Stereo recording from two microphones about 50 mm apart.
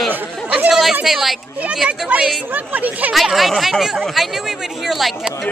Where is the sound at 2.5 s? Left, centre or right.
Right.